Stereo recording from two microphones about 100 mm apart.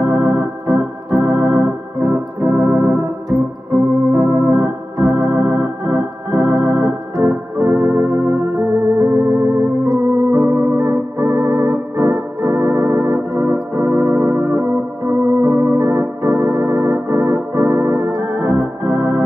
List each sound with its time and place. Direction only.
0.0 s organ: 25° right (ahead or behind)
6.4 s organ: 5° right (ahead or behind)
6.7 s organ: 25° right (ahead or behind)